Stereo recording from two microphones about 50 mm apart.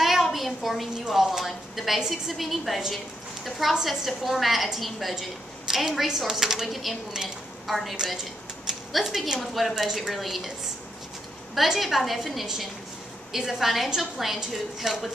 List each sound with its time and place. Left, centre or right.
0.0 s a sound: centre
1.0 s a woman's voice: centre
11.5 s a woman's voice: centre